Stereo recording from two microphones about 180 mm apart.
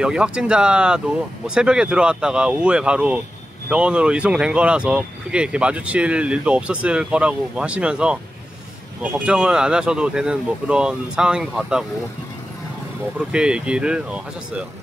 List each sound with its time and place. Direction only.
0.0 s speech: 5° right (ahead or behind)
13.3 s speech: 5° right (ahead or behind)